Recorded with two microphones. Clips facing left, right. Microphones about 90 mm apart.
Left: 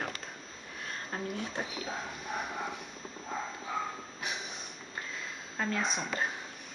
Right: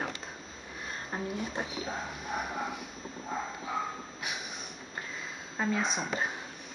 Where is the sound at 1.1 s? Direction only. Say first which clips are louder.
Right 2 dB; centre (ahead or behind).